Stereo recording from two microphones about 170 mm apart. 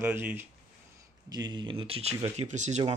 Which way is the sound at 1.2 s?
25° right (ahead or behind).